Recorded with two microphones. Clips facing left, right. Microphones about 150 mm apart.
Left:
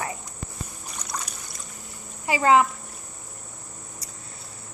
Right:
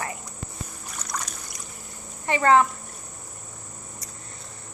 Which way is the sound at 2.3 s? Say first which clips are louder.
Even; 5° left (ahead or behind).